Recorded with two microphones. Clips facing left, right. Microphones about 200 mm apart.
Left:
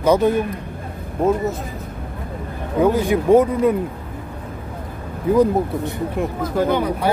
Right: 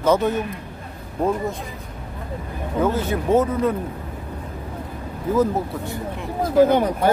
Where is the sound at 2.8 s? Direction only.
15° left (ahead or behind).